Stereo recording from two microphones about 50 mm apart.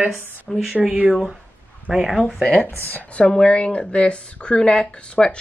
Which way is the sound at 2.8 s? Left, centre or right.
Left.